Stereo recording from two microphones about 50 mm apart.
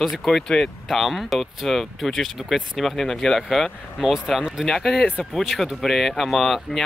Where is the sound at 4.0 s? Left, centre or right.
Centre.